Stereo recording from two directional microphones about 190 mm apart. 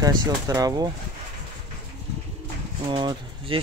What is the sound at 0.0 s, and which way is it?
Speech, 20° right (ahead or behind).